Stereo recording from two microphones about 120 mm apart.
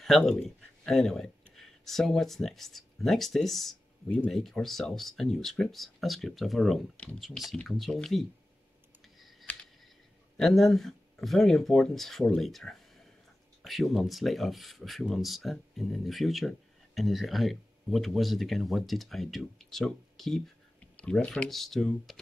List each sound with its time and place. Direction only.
0.0 s speech: centre (ahead or behind)
10.3 s speech: 5° left (ahead or behind)